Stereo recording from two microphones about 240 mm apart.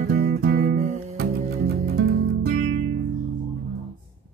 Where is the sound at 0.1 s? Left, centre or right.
Right.